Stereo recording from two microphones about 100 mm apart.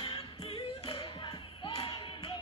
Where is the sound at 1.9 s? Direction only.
60° left (ahead or behind).